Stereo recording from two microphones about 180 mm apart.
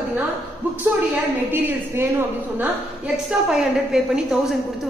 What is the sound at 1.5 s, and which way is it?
A woman's voice, 10° right (ahead or behind).